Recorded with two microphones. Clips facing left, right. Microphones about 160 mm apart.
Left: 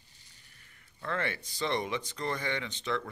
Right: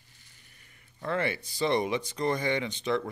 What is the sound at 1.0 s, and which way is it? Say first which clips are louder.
Speech: right 4 dB; 15° right (ahead or behind).